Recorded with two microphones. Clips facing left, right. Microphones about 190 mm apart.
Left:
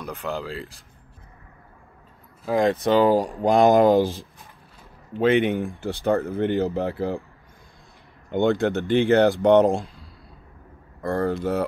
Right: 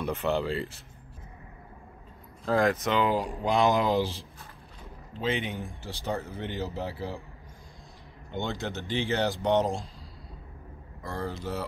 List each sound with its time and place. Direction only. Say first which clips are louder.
0.0 s speech: right 2 dB; centre (ahead or behind)
2.4 s speech: left 4 dB; 15° left (ahead or behind)
2.7 s speech: left 8 dB; 35° left (ahead or behind); by 7.2 s 55° left (ahead or behind)
8.3 s speech: left 12 dB; 55° left (ahead or behind)